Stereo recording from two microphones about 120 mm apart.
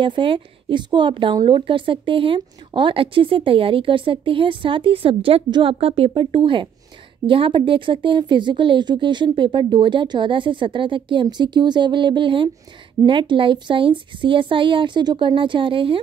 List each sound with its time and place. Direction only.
0.0 s a woman's voice: 45° right (ahead or behind)